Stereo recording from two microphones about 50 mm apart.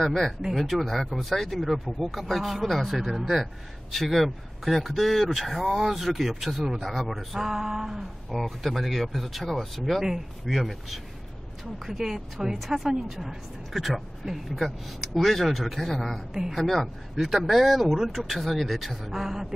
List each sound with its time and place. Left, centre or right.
0.0 s speech: centre
0.4 s a woman's voice: centre